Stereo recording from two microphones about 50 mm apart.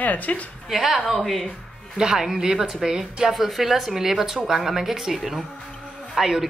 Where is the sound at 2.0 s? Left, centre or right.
Centre.